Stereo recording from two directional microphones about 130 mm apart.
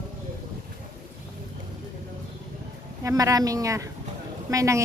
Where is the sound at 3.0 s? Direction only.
25° right (ahead or behind).